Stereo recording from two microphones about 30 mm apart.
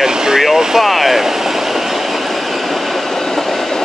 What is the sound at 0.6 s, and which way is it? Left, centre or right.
Speech, centre.